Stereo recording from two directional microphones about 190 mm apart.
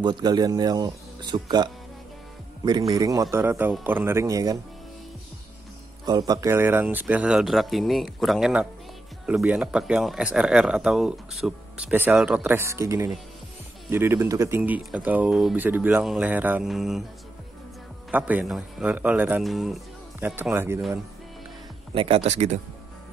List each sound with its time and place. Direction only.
0.0 s speech: 20° right (ahead or behind)
2.9 s speech: 20° right (ahead or behind)
6.0 s a man's voice: 20° right (ahead or behind); by 17.0 s centre (ahead or behind)
18.1 s speech: 10° right (ahead or behind)
21.9 s speech: 30° right (ahead or behind)